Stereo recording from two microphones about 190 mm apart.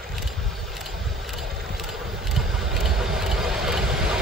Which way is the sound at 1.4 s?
55° right (ahead or behind).